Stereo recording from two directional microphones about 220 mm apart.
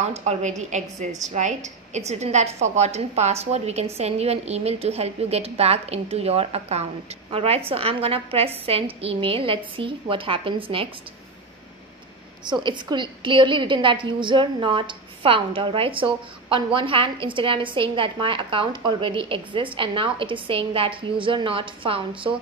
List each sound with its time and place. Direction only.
0.0 s a woman's voice: 30° right (ahead or behind)
12.4 s a woman's voice: 20° right (ahead or behind)